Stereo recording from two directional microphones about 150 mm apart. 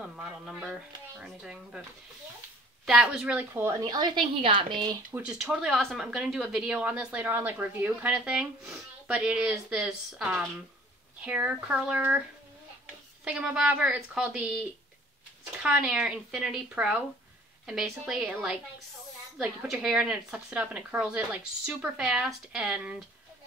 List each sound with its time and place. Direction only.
0.2 s speech: 5° right (ahead or behind)
2.8 s a woman's voice: 5° right (ahead or behind)
3.9 s a woman's voice: 30° right (ahead or behind)
5.1 s a woman's voice: 5° right (ahead or behind)
13.2 s a woman's voice: 5° right (ahead or behind)
15.6 s a woman's voice: 5° right (ahead or behind)